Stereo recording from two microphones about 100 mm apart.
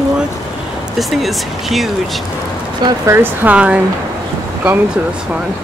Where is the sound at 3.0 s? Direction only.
20° right (ahead or behind).